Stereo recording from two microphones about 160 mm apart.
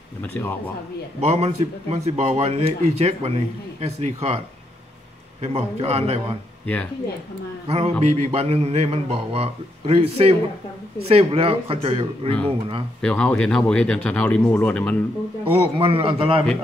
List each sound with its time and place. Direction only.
0.2 s speech: 10° left (ahead or behind)
1.2 s speech: 40° right (ahead or behind)
5.4 s speech: 40° right (ahead or behind)
6.6 s speech: 10° left (ahead or behind)
7.6 s speech: 40° right (ahead or behind)
13.0 s speech: 5° left (ahead or behind)
15.5 s speech: 35° right (ahead or behind)